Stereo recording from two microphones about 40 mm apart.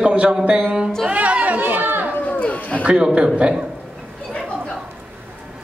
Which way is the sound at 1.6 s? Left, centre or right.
Right.